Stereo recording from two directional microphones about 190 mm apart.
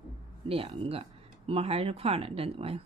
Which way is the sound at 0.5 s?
30° right (ahead or behind).